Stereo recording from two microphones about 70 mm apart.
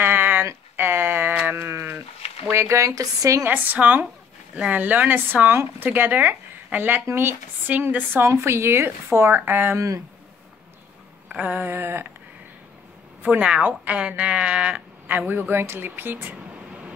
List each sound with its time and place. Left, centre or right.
0.0 s a sound: right
1.5 s sheep: right
2.5 s speech: right
3.4 s speech: right
7.6 s speech: right
9.8 s speech: right
11.3 s speech: right
13.2 s speech: centre